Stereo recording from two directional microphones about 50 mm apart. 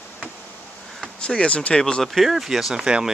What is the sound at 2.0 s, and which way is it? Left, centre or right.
Speech, centre.